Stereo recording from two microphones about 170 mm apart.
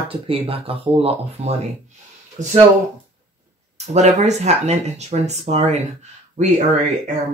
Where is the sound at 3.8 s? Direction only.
40° right (ahead or behind).